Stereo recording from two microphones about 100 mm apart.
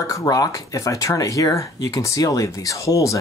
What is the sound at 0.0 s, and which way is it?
Speech, 35° left (ahead or behind).